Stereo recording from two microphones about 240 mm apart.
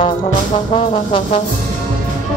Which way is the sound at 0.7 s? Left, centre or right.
Left.